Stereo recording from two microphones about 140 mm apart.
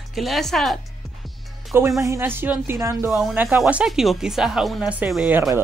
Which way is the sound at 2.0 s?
20° right (ahead or behind).